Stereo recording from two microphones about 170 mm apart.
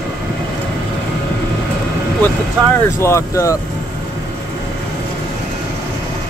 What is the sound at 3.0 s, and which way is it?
Speech, 15° left (ahead or behind).